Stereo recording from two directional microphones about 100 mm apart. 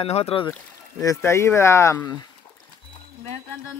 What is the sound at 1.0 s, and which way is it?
Speech, 30° left (ahead or behind).